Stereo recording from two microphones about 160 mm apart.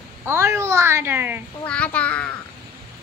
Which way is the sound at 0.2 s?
15° right (ahead or behind).